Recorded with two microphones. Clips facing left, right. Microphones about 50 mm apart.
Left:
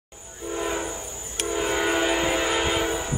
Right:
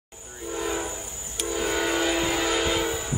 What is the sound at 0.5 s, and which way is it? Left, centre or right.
Train, centre.